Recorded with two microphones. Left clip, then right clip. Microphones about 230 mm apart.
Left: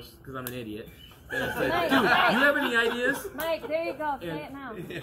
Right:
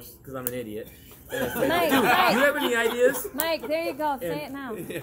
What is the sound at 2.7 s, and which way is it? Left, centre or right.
Speech, centre.